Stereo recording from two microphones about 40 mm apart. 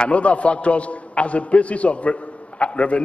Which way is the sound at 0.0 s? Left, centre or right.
Left.